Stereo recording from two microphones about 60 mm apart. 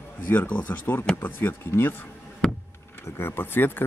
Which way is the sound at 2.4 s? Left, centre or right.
Centre.